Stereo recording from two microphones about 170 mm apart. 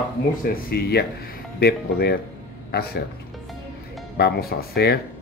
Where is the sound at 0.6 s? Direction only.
65° left (ahead or behind).